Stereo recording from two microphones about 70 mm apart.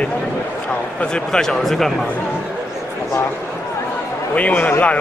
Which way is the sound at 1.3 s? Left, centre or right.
Centre.